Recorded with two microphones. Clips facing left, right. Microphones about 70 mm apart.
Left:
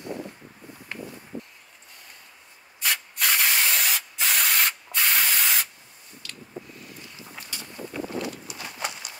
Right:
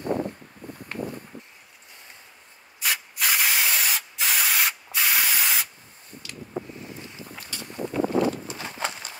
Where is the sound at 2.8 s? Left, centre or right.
Centre.